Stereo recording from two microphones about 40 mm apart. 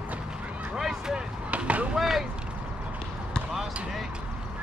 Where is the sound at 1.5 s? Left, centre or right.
Right.